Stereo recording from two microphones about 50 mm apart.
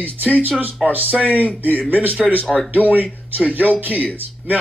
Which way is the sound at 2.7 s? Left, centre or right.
Right.